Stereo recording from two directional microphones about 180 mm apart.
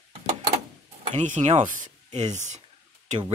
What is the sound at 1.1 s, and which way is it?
Speech, 40° right (ahead or behind).